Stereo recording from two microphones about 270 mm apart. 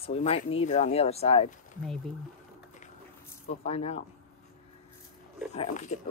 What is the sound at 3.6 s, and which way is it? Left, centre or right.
Speech, left.